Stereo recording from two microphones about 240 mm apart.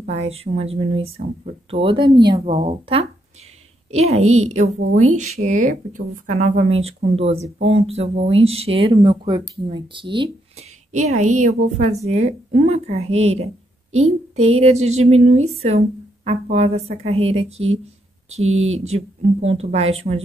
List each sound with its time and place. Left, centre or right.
0.0 s a woman's voice: right